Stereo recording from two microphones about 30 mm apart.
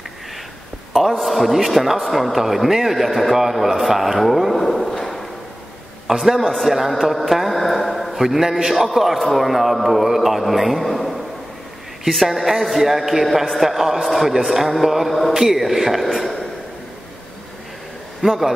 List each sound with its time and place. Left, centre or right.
1.2 s a man's voice: centre
6.4 s speech: centre
7.2 s mantra: centre
8.1 s a man's voice: centre
12.3 s a man's voice: centre
18.2 s a man's voice: right